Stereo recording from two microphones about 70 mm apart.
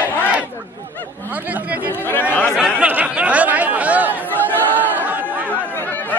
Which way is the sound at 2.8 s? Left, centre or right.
Centre.